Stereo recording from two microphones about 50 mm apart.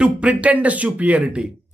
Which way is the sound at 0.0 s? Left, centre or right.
Right.